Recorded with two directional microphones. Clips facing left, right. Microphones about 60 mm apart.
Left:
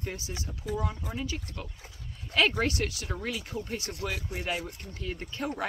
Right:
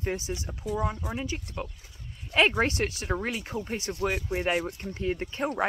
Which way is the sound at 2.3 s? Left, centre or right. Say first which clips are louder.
Right 3 dB; right.